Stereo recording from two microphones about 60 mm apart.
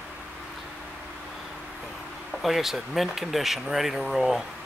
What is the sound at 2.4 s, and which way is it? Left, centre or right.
Speech, centre.